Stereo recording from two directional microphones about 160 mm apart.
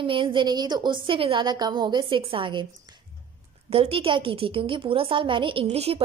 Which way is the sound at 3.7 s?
35° right (ahead or behind).